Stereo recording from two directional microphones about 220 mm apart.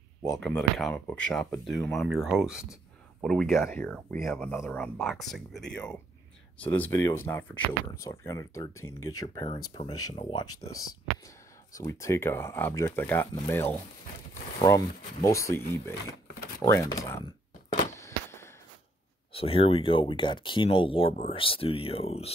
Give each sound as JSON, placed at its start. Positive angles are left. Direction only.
{"t": 0.4, "sound": "speech", "side_deg": 5}
{"t": 11.7, "sound": "speech", "side_deg": 15}
{"t": 15.2, "sound": "speech", "side_deg": 15}
{"t": 17.7, "sound": "a sound", "side_deg": 15}
{"t": 19.3, "sound": "speech", "side_deg": 25}